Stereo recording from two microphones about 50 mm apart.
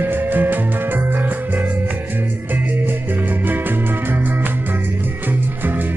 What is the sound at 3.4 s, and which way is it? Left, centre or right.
Music, right.